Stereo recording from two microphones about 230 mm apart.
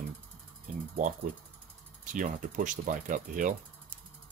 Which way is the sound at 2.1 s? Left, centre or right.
Right.